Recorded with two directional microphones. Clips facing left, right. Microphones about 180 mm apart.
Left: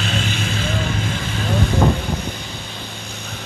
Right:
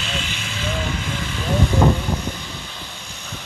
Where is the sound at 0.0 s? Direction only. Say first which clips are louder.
Left 6 dB; 40° left (ahead or behind).